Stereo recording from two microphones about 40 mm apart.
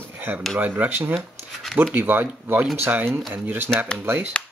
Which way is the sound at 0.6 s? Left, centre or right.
Right.